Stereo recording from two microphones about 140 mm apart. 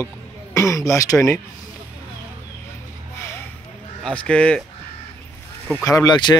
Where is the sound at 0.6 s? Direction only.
20° left (ahead or behind).